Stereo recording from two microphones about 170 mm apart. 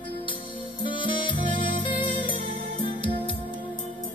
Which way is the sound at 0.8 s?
30° left (ahead or behind).